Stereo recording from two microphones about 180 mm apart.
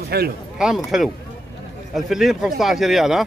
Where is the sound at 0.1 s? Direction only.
60° right (ahead or behind).